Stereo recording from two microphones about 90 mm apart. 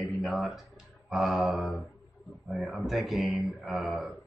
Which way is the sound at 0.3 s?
5° right (ahead or behind).